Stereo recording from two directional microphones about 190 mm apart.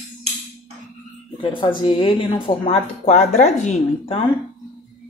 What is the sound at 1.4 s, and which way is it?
Speech, 25° left (ahead or behind).